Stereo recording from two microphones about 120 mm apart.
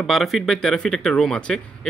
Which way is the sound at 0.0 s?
Centre (ahead or behind).